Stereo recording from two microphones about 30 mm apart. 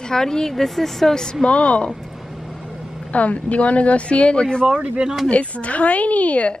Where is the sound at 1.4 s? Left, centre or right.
Left.